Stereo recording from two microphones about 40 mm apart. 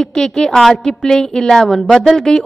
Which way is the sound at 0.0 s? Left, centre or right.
Centre.